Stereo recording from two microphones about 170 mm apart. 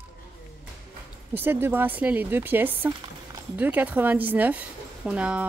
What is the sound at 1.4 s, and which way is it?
A woman's voice, 15° right (ahead or behind).